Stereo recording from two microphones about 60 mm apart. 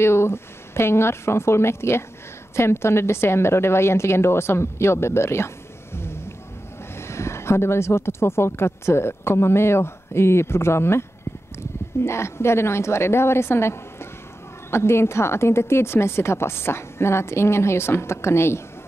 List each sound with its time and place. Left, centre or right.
0.0 s speech: left
5.9 s music: left
7.0 s speech: left